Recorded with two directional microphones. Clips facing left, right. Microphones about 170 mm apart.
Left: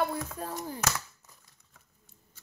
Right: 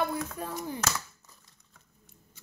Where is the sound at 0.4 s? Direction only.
35° left (ahead or behind).